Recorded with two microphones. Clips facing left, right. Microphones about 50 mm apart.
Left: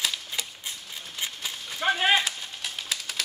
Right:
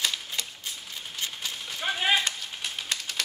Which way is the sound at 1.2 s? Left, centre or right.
Centre.